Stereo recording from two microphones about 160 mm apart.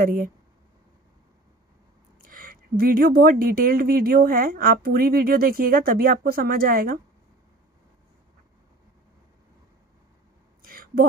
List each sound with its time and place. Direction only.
0.0 s speech: 60° right (ahead or behind)
2.2 s speech: 60° right (ahead or behind)
10.6 s a sound: 65° right (ahead or behind)